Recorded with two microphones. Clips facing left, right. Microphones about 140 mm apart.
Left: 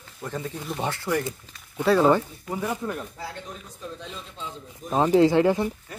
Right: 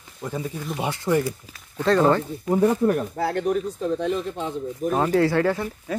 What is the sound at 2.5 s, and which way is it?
Speech, 35° right (ahead or behind).